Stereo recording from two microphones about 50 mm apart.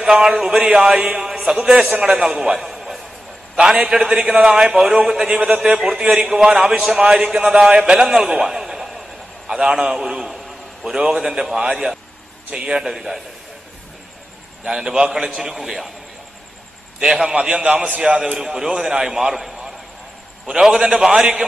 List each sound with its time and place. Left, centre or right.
0.0 s a man's voice: centre
3.5 s a man's voice: centre
5.3 s a man's voice: centre
14.6 s a man's voice: centre
17.0 s a man's voice: centre